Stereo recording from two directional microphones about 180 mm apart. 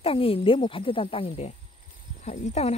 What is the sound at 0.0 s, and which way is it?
Speech, 30° left (ahead or behind).